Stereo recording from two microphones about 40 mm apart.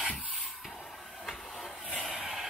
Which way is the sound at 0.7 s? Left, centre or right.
Centre.